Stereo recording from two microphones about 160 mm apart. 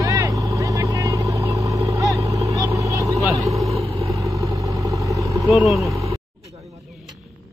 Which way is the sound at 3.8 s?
40° right (ahead or behind).